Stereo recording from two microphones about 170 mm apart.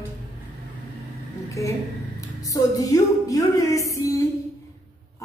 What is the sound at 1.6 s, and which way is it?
Speech, 20° left (ahead or behind).